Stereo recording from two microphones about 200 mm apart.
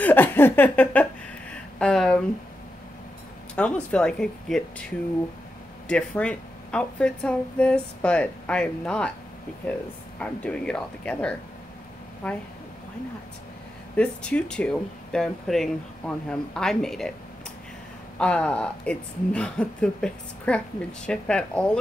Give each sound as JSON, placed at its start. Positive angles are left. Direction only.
{"t": 0.0, "sound": "a sound", "side_deg": 10}
{"t": 3.5, "sound": "a woman's voice", "side_deg": 5}
{"t": 5.9, "sound": "a woman's voice", "side_deg": 5}
{"t": 13.9, "sound": "a woman's voice", "side_deg": 5}
{"t": 18.2, "sound": "a woman's voice", "side_deg": 5}